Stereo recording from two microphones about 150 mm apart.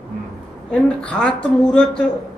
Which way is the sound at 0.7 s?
5° left (ahead or behind).